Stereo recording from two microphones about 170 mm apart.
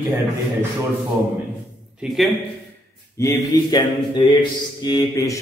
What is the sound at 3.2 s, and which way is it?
Speech, 25° left (ahead or behind).